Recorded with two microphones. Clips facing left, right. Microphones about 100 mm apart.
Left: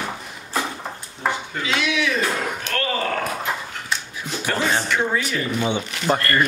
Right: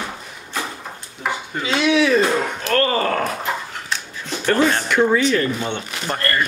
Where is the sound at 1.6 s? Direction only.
30° right (ahead or behind).